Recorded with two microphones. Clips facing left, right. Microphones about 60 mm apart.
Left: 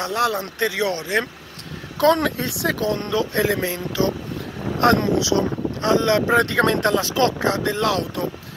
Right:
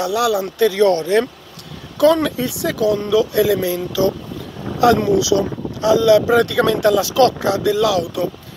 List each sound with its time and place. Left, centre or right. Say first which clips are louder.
0.0 s speech: right 4 dB; left
0.7 s speech: right 10 dB; centre
2.1 s speech: right 3 dB; left
4.7 s speech: right 4 dB; left
5.2 s speech: right 3 dB; left